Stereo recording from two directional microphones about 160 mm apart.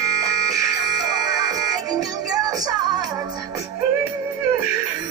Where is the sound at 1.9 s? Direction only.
25° right (ahead or behind).